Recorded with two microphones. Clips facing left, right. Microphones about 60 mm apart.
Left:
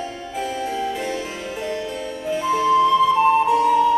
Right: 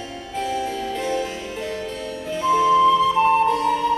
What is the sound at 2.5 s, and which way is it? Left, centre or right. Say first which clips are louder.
Flute: right 1 dB; centre.